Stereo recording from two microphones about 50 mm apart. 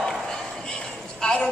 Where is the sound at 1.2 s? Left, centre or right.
Centre.